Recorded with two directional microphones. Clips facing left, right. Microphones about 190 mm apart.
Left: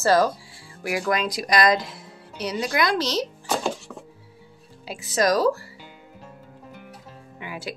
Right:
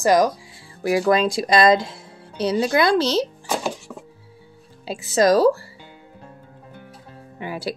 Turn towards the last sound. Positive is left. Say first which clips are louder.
# right 6 dB
turn(degrees=-35)  # may be behind; listen again after turning